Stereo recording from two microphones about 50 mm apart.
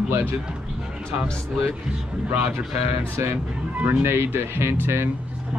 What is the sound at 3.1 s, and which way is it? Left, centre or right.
Speech, right.